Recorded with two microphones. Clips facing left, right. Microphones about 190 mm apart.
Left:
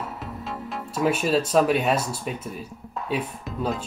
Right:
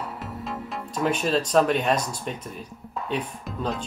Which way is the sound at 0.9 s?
5° left (ahead or behind).